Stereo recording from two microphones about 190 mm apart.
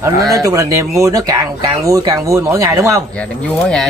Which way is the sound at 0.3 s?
20° right (ahead or behind).